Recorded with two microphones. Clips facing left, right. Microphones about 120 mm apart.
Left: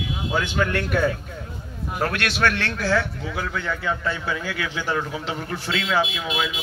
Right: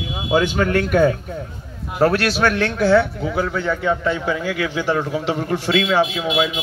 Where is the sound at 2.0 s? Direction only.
30° right (ahead or behind).